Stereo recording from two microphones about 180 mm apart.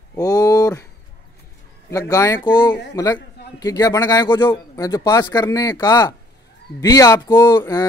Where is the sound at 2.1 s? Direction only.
20° left (ahead or behind).